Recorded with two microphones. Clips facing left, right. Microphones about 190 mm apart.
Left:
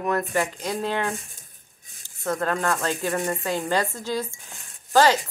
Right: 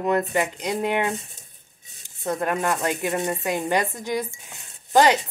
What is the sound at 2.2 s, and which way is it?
A woman's voice, 20° right (ahead or behind).